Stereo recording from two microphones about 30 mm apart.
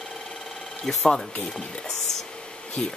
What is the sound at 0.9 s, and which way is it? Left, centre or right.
Speech, centre.